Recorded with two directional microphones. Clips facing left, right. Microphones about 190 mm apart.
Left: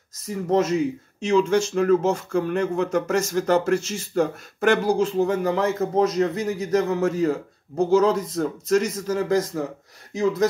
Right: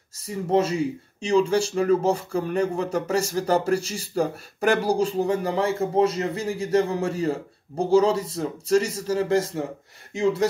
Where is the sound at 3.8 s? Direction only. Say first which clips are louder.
Left 2 dB; 10° right (ahead or behind).